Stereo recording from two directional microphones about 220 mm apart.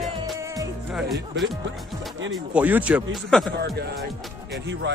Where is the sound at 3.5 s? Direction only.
45° right (ahead or behind).